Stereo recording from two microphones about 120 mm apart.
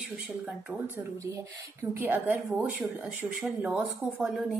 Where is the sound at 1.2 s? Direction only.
25° right (ahead or behind).